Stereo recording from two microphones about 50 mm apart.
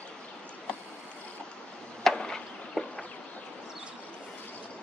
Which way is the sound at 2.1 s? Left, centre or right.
Centre.